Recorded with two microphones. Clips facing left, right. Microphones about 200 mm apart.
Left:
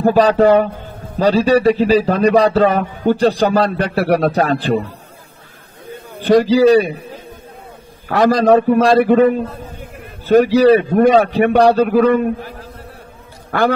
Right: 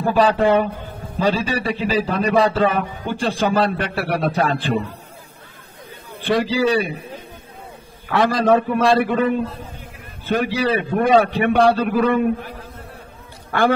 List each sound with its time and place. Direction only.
0.0 s a man's voice: 40° left (ahead or behind)
6.1 s a man's voice: 40° left (ahead or behind)
8.1 s a man's voice: 40° left (ahead or behind)
13.5 s a man's voice: 40° left (ahead or behind)